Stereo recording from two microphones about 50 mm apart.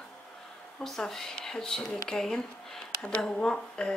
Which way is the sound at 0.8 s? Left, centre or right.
Centre.